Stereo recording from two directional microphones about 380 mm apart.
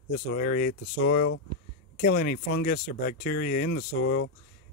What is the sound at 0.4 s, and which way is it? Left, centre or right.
Speech, left.